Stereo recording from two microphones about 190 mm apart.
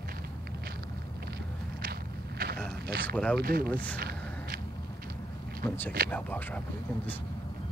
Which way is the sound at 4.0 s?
50° right (ahead or behind).